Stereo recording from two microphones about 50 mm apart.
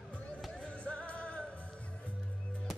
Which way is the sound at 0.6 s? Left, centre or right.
Left.